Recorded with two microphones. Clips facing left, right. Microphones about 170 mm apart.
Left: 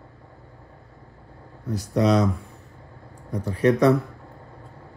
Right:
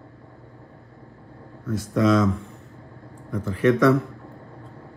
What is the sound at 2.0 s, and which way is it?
Speech, 35° left (ahead or behind).